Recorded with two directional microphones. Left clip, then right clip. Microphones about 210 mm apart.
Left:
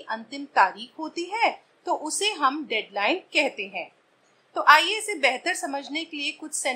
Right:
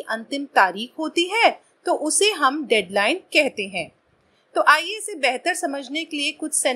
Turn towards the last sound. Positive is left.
turn(degrees=0)  # may be behind; listen again after turning